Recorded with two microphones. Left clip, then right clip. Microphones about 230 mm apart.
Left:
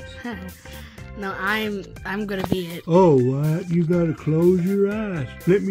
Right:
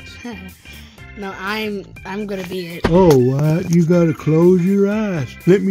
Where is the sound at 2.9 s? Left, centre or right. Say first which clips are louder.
Right 4 dB; right.